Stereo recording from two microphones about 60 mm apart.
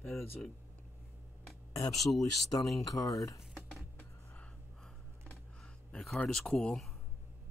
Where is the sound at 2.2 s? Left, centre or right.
Left.